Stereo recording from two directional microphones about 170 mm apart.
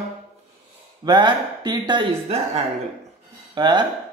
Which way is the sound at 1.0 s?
25° right (ahead or behind).